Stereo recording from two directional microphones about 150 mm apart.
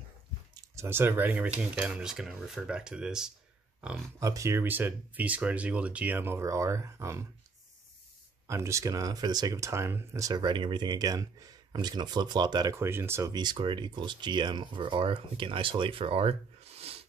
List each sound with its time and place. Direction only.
0.7 s speech: 15° right (ahead or behind)
4.2 s speech: 20° right (ahead or behind)
8.5 s speech: 20° right (ahead or behind)
13.3 s speech: 30° right (ahead or behind)